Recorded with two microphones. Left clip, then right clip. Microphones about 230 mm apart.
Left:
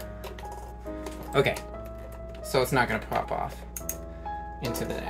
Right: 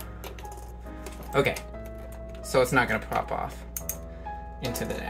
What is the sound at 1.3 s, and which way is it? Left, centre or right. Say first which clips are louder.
Speech: even; centre.